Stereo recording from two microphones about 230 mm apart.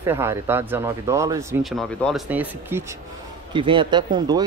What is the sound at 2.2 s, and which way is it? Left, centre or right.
Speech, centre.